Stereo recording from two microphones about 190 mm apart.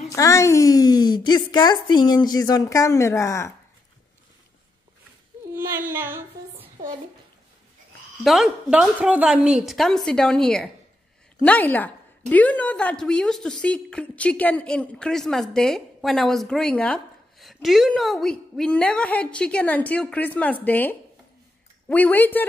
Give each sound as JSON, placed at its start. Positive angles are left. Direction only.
{"t": 0.1, "sound": "a woman's voice", "side_deg": 15}
{"t": 5.5, "sound": "child singing", "side_deg": -10}
{"t": 8.2, "sound": "a woman's voice", "side_deg": 0}